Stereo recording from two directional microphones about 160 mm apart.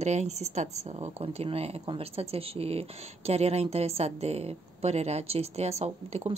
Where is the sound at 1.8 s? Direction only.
35° right (ahead or behind).